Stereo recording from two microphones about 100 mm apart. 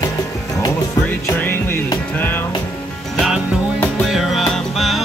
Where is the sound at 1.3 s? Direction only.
20° left (ahead or behind).